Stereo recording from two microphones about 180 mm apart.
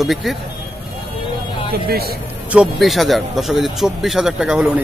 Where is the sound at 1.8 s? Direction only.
60° right (ahead or behind).